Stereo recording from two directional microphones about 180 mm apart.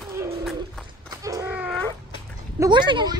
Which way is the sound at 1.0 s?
20° right (ahead or behind).